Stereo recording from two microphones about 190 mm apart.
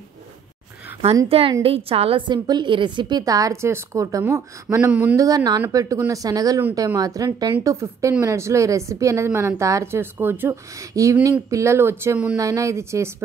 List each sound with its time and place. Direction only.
1.5 s a woman's voice: 30° right (ahead or behind)